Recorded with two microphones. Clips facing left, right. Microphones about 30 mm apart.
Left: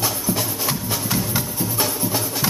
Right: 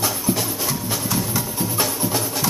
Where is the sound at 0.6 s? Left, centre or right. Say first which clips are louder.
Even; centre.